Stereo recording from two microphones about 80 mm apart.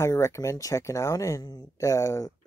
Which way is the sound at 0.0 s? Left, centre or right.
Left.